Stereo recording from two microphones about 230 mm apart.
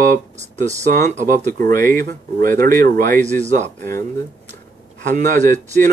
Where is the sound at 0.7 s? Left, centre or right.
Right.